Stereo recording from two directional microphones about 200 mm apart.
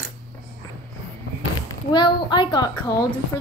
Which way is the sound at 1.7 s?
20° left (ahead or behind).